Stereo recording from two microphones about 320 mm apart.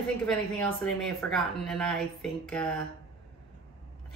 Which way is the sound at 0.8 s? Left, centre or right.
Centre.